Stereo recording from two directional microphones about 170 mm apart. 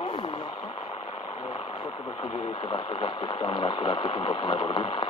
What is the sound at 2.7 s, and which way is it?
Speech, 30° left (ahead or behind).